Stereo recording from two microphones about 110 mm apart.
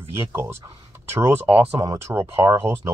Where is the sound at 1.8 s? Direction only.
30° right (ahead or behind).